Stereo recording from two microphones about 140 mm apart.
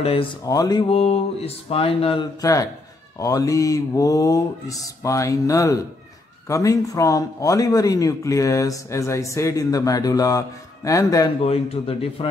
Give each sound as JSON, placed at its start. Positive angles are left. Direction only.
{"t": 0.0, "sound": "mantra", "side_deg": 45}
{"t": 0.5, "sound": "speech", "side_deg": 30}
{"t": 0.8, "sound": "mantra", "side_deg": 45}
{"t": 2.4, "sound": "speech", "side_deg": 25}
{"t": 11.4, "sound": "mantra", "side_deg": 45}